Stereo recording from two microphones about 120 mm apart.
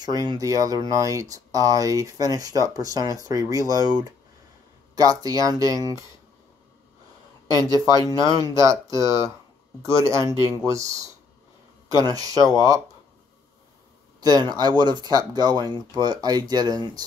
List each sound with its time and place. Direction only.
0.0 s speech: 35° right (ahead or behind)
4.9 s speech: 30° right (ahead or behind)
7.5 s speech: 30° right (ahead or behind)
14.2 s speech: 35° right (ahead or behind)